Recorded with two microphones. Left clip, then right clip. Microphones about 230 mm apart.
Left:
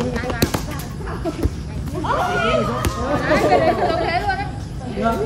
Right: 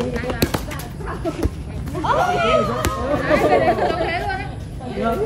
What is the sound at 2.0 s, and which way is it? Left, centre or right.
Speech, centre.